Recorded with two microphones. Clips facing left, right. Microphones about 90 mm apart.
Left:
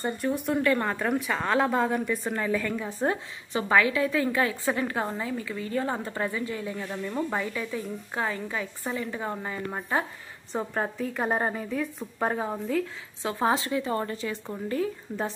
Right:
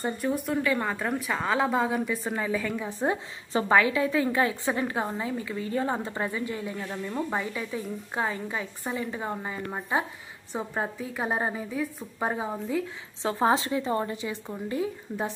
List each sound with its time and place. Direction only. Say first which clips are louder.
0.0 s a woman's voice: even; centre (ahead or behind)
3.5 s a woman's voice: right 1 dB; 25° right (ahead or behind)
6.8 s speech: left 1 dB; 5° right (ahead or behind)
7.3 s a woman's voice: left 1 dB; 25° right (ahead or behind)
9.3 s a woman's voice: even; 10° right (ahead or behind)
13.2 s a woman's voice: right 2 dB; 25° right (ahead or behind)